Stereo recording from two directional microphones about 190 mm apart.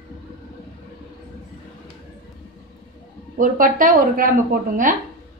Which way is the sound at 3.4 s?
45° right (ahead or behind).